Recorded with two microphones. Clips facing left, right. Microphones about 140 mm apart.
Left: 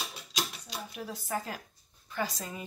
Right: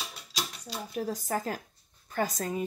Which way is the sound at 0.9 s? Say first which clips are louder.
Right 5 dB; 40° right (ahead or behind).